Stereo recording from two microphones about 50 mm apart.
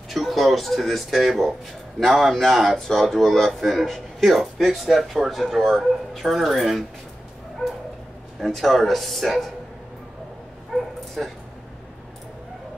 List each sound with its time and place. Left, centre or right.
0.1 s speech: centre
8.4 s speech: centre
10.7 s bow-wow: centre
11.2 s speech: centre